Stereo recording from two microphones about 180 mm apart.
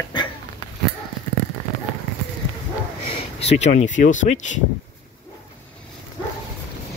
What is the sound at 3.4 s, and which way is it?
Speech, 40° left (ahead or behind).